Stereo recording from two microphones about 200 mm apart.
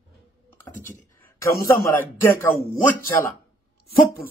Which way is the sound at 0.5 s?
10° left (ahead or behind).